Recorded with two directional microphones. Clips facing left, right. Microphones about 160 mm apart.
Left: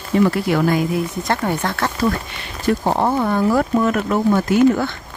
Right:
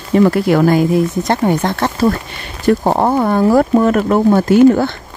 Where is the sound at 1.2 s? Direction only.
20° right (ahead or behind).